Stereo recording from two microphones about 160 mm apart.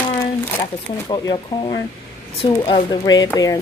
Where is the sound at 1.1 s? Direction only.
30° left (ahead or behind).